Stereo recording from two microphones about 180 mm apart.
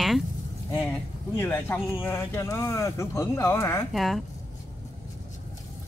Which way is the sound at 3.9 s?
Centre (ahead or behind).